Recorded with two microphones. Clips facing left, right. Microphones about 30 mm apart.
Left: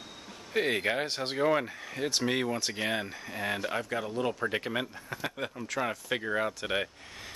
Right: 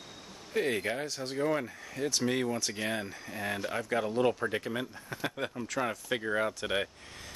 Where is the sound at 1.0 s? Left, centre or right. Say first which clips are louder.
Left 3 dB; left.